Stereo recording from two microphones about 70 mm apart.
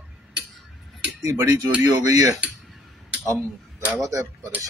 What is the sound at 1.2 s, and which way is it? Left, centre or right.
Speech, right.